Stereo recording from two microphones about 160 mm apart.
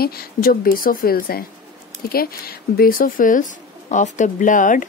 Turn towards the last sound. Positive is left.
turn(degrees=55)  # may be behind; listen again after turning